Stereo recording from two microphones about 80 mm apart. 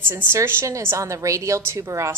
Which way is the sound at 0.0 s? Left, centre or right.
Right.